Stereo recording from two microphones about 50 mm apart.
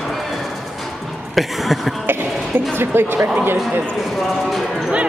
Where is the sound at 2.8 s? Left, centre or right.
Right.